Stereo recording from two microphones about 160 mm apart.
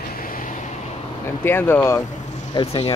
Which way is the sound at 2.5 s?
30° left (ahead or behind).